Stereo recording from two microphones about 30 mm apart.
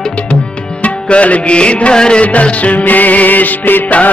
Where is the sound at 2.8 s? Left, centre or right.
Left.